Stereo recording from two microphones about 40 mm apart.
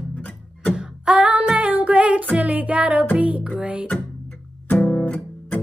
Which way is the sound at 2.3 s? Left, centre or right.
Right.